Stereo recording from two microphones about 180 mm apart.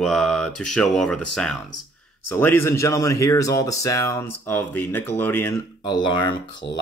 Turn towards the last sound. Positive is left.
turn(degrees=25)  # may be behind; listen again after turning